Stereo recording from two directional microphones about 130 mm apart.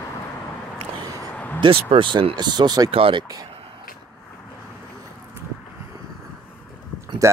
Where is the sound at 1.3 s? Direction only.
15° left (ahead or behind).